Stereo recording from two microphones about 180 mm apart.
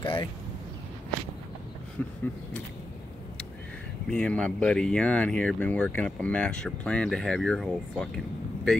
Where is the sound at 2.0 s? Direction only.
10° left (ahead or behind).